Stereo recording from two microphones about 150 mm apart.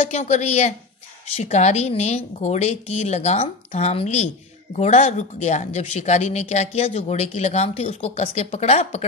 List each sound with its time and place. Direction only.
0.0 s speech: 50° left (ahead or behind)